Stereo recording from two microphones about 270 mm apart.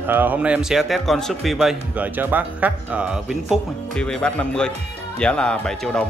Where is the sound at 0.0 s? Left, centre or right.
Centre.